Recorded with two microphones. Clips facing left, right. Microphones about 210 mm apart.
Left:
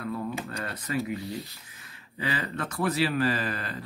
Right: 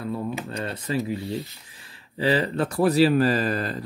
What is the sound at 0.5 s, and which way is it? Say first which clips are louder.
Speech: right 5 dB; 30° right (ahead or behind).